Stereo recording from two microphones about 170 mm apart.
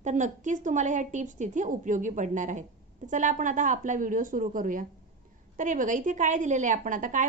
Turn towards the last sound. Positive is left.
turn(degrees=-50)  # may be behind; listen again after turning